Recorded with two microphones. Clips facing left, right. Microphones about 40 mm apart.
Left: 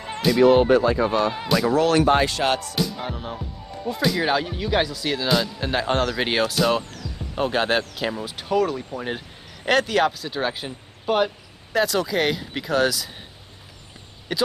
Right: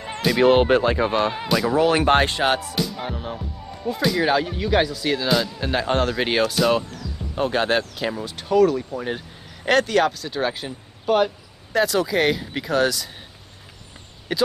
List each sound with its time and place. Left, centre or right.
0.3 s speech: right
1.3 s speech: centre
2.7 s speech: centre
7.3 s speech: centre
14.3 s speech: centre